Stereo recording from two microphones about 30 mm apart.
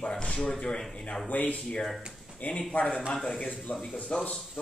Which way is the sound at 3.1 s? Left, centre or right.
Left.